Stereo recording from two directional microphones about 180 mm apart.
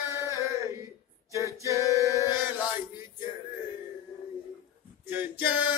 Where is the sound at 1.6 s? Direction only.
15° right (ahead or behind).